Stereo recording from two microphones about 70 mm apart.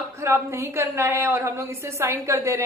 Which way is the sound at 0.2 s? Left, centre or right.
Right.